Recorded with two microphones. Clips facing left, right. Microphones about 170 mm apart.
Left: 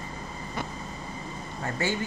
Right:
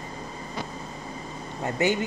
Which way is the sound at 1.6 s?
20° right (ahead or behind).